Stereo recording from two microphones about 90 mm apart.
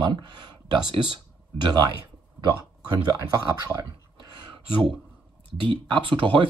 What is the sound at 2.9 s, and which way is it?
Speech, 45° right (ahead or behind).